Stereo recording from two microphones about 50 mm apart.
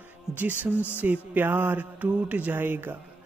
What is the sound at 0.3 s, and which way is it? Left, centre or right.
Speech, right.